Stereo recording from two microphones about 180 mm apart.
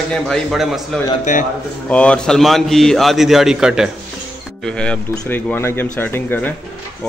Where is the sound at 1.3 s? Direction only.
45° left (ahead or behind).